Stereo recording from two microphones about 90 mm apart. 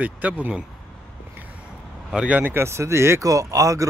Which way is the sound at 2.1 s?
15° right (ahead or behind).